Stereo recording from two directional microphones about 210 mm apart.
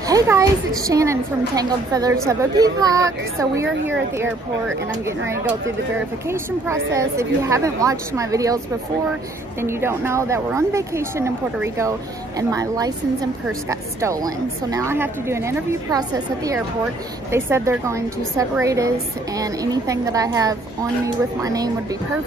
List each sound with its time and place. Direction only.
0.1 s a woman's voice: 15° right (ahead or behind)
5.9 s a woman's voice: 10° right (ahead or behind)
9.6 s a woman's voice: 10° right (ahead or behind)